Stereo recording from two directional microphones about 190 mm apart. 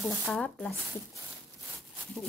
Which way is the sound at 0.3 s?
5° left (ahead or behind).